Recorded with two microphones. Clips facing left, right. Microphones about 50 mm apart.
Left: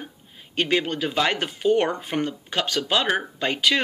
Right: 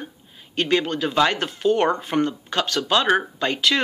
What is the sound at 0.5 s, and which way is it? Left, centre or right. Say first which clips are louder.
Speech: right 2 dB; left.